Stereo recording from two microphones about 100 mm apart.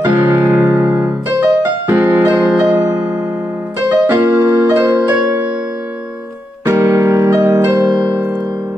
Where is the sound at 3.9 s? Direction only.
15° right (ahead or behind).